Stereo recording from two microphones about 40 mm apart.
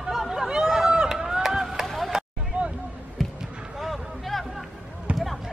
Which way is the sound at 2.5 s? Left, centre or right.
Right.